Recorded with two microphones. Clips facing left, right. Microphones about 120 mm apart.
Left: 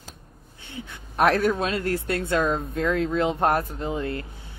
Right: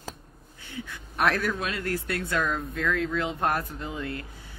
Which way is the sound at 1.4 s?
25° left (ahead or behind).